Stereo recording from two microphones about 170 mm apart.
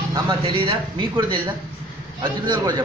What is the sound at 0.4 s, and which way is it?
Speech, 30° right (ahead or behind).